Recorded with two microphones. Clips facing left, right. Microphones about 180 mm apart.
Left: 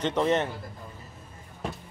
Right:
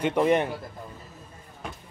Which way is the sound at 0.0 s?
10° right (ahead or behind).